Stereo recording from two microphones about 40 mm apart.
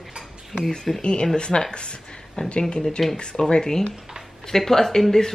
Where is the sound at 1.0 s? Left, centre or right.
Left.